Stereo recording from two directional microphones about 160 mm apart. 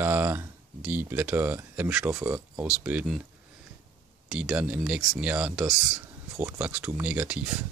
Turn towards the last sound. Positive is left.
turn(degrees=-10)  # may be behind; listen again after turning